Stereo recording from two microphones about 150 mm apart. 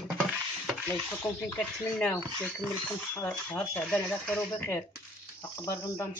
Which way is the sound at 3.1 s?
15° left (ahead or behind).